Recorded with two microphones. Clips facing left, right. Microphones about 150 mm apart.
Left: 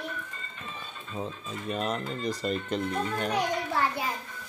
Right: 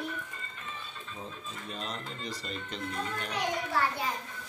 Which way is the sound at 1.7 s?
60° left (ahead or behind).